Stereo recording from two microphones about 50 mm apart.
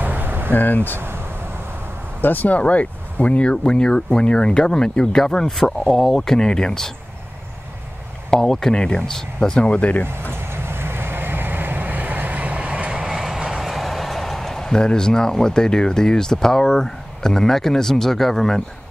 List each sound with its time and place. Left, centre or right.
0.0 s vehicle: right
0.5 s speech: left
0.9 s a sound: right
2.2 s speech: left; by 6.9 s centre
8.3 s speech: centre
10.3 s vehicle: right
13.6 s speech: centre